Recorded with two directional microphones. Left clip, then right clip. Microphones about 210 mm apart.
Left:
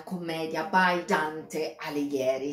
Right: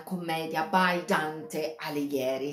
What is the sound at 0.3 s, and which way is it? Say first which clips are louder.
Speech: even; 20° right (ahead or behind).